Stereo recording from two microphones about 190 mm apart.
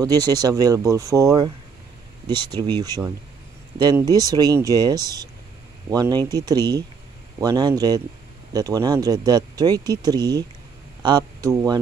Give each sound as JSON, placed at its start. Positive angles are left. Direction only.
{"t": 0.0, "sound": "speech", "side_deg": -20}